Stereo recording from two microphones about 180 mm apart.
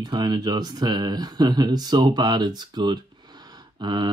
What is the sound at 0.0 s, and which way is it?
Speech, 25° right (ahead or behind).